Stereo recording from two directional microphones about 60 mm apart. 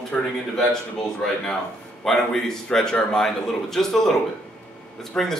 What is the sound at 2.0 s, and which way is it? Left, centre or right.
A man's voice, centre.